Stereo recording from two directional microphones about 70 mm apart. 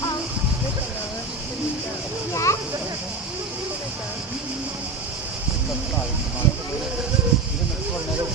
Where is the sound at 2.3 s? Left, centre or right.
Left.